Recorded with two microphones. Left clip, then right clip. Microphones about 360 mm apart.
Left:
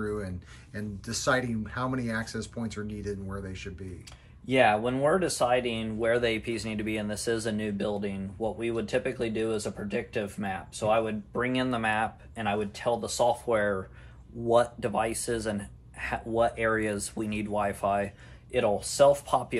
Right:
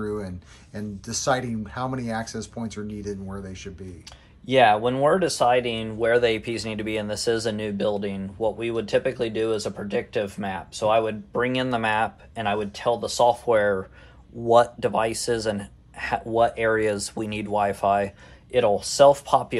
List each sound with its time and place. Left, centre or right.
0.0 s a sound: centre
0.7 s speech: centre
4.5 s speech: right